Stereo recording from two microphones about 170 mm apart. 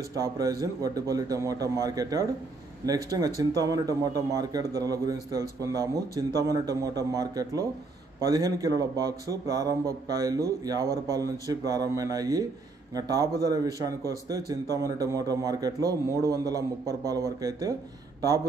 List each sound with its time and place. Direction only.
0.1 s speech: 20° right (ahead or behind)